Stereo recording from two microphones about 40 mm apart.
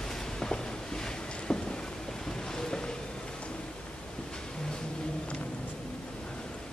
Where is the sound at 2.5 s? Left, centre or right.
Centre.